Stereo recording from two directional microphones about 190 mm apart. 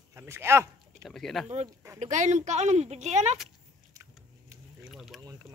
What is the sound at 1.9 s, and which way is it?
Speech, 40° right (ahead or behind).